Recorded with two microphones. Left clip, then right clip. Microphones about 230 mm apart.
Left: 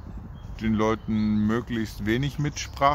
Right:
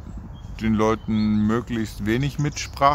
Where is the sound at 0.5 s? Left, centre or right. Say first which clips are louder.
Right 4 dB; centre.